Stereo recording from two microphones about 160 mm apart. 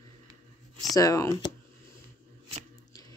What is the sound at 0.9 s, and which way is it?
Speech, 20° left (ahead or behind).